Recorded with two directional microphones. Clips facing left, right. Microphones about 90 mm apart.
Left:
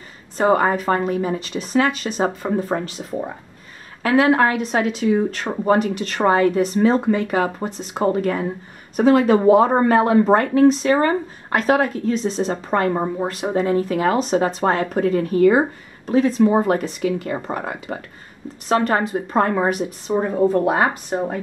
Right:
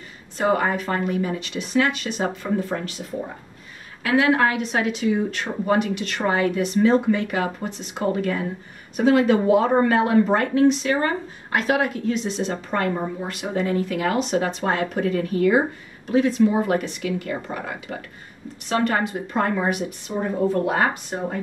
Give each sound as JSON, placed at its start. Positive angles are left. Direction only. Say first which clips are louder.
{"t": 0.4, "sound": "speech", "louder": "left 4 dB", "side_deg": 35}
{"t": 4.0, "sound": "speech", "louder": "left 3 dB", "side_deg": 35}